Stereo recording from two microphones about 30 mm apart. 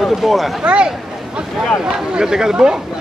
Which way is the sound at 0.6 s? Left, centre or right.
Right.